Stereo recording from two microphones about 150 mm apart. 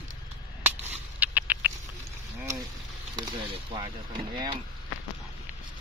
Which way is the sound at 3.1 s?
30° right (ahead or behind).